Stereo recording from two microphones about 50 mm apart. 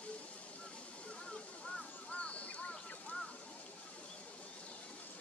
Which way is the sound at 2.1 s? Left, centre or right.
Left.